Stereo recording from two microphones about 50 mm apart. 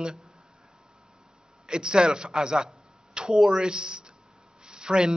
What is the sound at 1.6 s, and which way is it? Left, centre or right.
A man's voice, centre.